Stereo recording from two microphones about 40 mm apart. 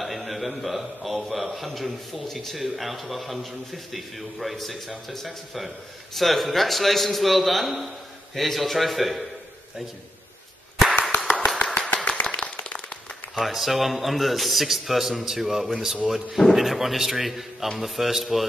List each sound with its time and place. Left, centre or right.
0.0 s a man's voice: centre
11.1 s finger snapping: centre
12.4 s a sound: left
13.3 s a man's voice: centre